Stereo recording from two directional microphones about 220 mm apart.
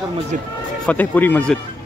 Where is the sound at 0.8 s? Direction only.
5° left (ahead or behind).